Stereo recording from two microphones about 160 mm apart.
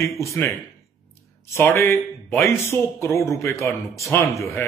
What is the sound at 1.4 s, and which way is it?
A man's voice, 15° left (ahead or behind).